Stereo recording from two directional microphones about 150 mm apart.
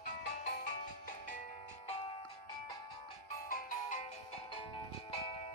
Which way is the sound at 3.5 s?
60° left (ahead or behind).